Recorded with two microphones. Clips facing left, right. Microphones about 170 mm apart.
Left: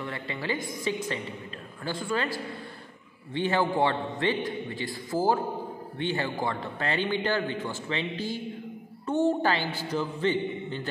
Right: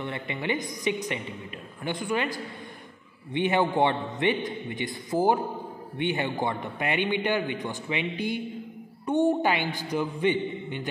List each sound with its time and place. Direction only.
0.0 s a man's voice: 20° right (ahead or behind)